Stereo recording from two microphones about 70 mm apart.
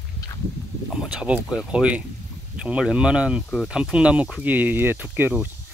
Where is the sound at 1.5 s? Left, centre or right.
Centre.